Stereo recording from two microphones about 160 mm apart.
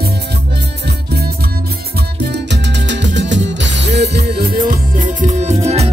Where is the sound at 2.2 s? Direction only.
90° right.